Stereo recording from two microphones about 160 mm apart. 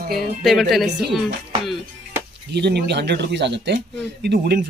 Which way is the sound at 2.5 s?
90° right.